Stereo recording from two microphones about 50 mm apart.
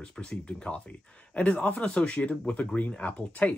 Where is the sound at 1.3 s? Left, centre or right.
Left.